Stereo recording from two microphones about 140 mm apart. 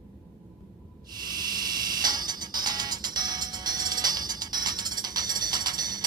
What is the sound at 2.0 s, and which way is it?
Music, 30° right (ahead or behind).